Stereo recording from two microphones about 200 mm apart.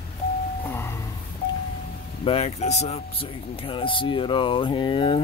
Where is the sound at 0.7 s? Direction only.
10° left (ahead or behind).